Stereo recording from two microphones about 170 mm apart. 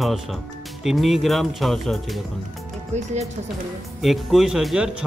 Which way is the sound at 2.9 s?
40° right (ahead or behind).